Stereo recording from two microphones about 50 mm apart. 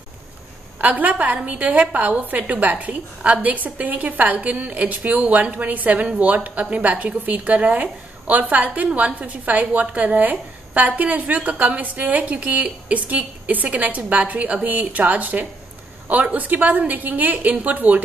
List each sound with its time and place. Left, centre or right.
0.7 s a woman's voice: right